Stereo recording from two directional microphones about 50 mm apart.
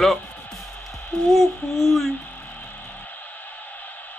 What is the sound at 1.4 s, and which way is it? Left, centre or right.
Speech, centre.